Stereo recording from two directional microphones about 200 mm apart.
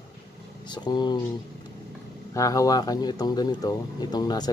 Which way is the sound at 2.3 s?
15° left (ahead or behind).